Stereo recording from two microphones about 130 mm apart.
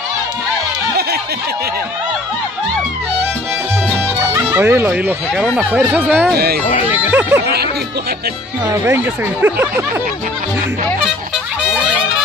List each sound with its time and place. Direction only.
4.3 s speech: 15° right (ahead or behind)
8.8 s speech: 15° right (ahead or behind)